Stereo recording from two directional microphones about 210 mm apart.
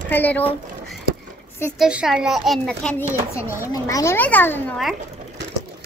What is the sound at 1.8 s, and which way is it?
A child's voice, 5° right (ahead or behind).